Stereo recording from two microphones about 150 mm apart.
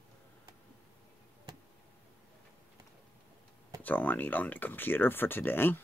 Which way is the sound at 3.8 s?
10° left (ahead or behind).